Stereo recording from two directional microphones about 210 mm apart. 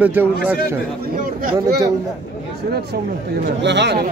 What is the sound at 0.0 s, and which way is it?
Speech, 5° right (ahead or behind).